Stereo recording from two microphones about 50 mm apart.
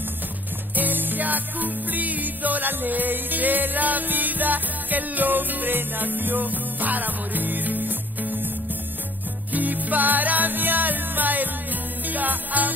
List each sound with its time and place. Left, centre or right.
0.7 s music: right
9.5 s music: right